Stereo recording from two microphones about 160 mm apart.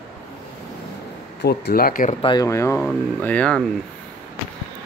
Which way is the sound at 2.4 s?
15° left (ahead or behind).